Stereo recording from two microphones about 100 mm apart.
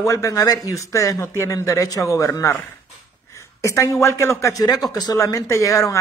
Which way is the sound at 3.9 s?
30° left (ahead or behind).